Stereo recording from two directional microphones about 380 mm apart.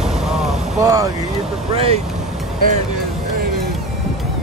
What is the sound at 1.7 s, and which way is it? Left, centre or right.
Speech, centre.